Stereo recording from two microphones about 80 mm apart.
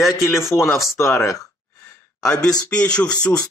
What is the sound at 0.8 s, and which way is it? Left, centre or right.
Speech, left.